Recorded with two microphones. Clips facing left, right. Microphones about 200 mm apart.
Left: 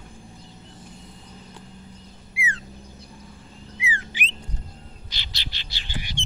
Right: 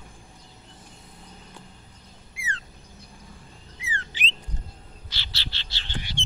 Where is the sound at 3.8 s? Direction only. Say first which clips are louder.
Left 3 dB; 10° left (ahead or behind).